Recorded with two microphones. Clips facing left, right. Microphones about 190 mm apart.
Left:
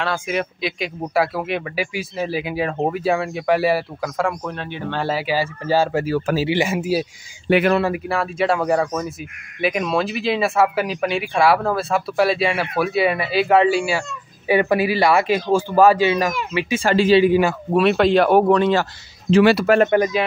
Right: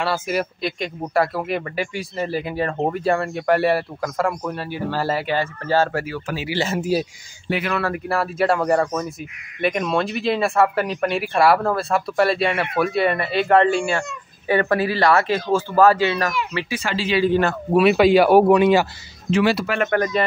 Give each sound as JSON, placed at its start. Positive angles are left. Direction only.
{"t": 0.0, "sound": "a man's voice", "side_deg": -5}
{"t": 7.5, "sound": "speech", "side_deg": 60}
{"t": 8.1, "sound": "a man's voice", "side_deg": 0}
{"t": 16.8, "sound": "speech", "side_deg": 50}
{"t": 17.2, "sound": "a man's voice", "side_deg": 10}
{"t": 17.7, "sound": "speech", "side_deg": -5}
{"t": 19.4, "sound": "speech", "side_deg": 65}